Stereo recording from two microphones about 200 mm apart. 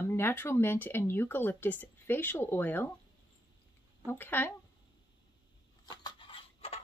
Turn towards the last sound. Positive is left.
turn(degrees=30)  # may be behind; listen again after turning